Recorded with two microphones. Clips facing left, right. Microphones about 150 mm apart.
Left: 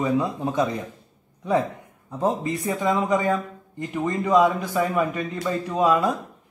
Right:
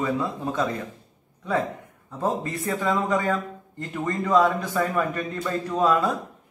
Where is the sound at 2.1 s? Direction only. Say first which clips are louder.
Left 3 dB; 15° left (ahead or behind).